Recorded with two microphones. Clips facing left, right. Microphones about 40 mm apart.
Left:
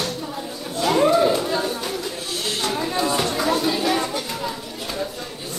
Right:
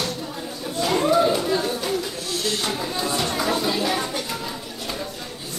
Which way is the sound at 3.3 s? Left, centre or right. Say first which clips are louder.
Left 2 dB; centre.